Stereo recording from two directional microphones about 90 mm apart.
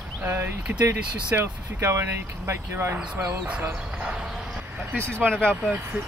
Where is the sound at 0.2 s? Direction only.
30° right (ahead or behind).